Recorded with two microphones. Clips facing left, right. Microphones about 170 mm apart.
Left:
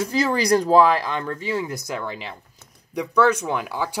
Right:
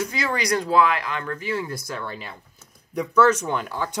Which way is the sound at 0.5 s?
35° left (ahead or behind).